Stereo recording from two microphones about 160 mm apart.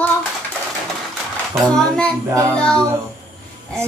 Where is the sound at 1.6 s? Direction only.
5° left (ahead or behind).